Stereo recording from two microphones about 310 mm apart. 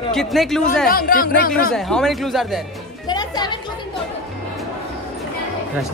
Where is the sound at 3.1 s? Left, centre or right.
Centre.